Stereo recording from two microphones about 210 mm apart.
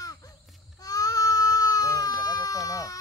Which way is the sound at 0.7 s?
15° left (ahead or behind).